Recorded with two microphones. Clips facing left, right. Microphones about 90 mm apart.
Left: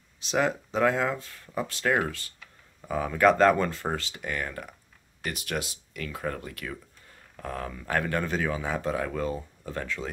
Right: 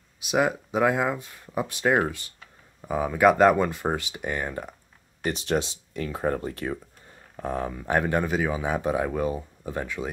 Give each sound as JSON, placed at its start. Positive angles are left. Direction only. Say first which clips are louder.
{"t": 0.2, "sound": "speech", "louder": "right 3 dB", "side_deg": -10}